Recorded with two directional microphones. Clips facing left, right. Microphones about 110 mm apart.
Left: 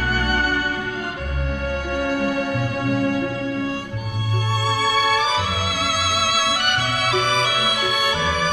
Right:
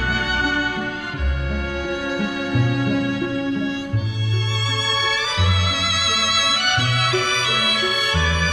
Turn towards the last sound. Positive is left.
turn(degrees=45)  # may be behind; listen again after turning